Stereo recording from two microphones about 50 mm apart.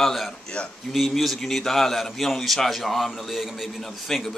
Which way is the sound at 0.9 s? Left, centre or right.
Centre.